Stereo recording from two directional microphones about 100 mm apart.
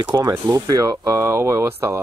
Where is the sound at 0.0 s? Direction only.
40° right (ahead or behind).